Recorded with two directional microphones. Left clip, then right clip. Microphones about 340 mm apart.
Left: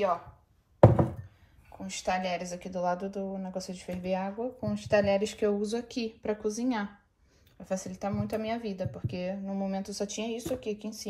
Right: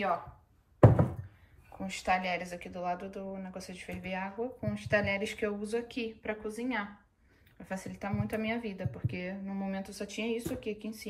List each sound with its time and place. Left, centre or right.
1.9 s speech: centre